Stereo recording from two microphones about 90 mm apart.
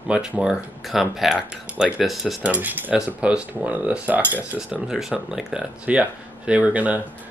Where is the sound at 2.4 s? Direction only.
15° right (ahead or behind).